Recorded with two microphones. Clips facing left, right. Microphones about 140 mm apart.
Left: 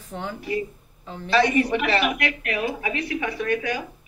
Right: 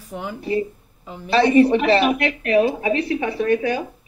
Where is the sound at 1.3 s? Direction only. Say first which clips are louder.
Right 6 dB; 30° right (ahead or behind).